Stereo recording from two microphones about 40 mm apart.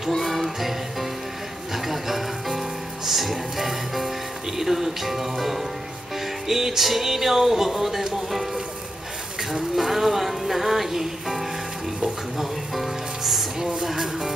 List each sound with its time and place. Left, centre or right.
0.2 s music: centre
4.6 s speech: centre
6.4 s music: centre
9.8 s speech: centre
12.4 s music: centre